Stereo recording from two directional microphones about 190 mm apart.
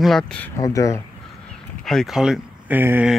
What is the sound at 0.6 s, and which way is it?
Speech, 15° left (ahead or behind).